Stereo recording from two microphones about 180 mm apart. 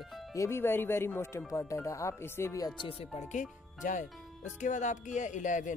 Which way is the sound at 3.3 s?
45° left (ahead or behind).